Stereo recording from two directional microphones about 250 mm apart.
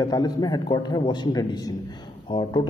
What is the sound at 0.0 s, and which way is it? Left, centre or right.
A man's voice, centre.